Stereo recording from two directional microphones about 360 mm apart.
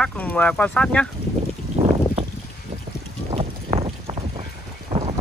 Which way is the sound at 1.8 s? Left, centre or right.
Centre.